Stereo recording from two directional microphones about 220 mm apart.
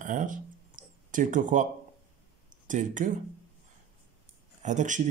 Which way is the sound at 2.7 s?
35° right (ahead or behind).